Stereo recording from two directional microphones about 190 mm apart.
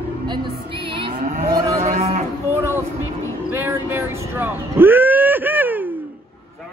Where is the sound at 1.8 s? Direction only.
35° right (ahead or behind).